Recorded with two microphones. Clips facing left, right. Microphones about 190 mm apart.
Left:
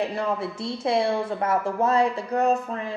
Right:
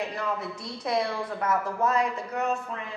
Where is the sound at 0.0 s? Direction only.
30° left (ahead or behind).